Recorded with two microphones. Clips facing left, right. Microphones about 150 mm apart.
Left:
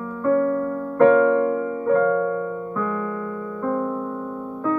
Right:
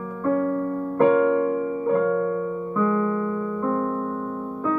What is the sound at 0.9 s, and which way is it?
Music, 10° right (ahead or behind).